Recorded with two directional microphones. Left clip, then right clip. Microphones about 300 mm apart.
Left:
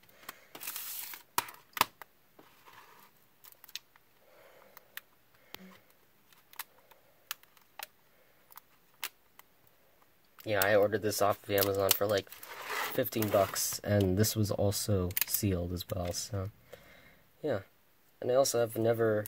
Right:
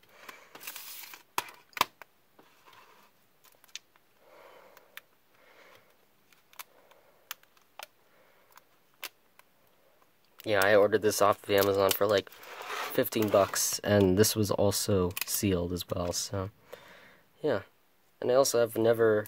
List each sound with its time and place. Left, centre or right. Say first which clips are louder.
10.3 s speech: right 4 dB; right